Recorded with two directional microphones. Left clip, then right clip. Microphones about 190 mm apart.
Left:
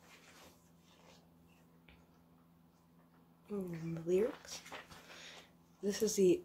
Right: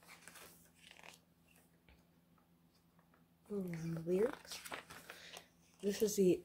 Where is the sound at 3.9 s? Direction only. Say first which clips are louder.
Left 2 dB; 25° right (ahead or behind).